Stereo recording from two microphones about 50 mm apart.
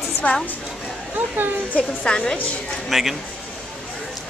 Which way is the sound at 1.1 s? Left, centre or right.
Right.